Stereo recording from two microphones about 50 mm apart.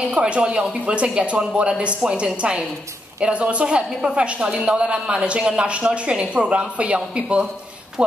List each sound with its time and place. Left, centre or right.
0.1 s a woman's voice: right